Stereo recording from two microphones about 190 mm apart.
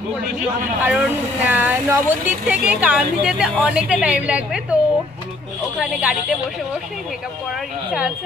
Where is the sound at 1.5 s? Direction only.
10° right (ahead or behind).